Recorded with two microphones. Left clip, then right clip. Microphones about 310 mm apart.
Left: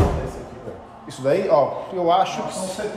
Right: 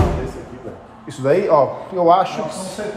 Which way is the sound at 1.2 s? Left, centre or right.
Right.